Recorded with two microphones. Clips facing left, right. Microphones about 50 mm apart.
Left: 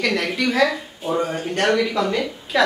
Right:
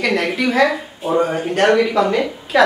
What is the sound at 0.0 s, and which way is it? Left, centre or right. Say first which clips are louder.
Speech: right 3 dB; centre.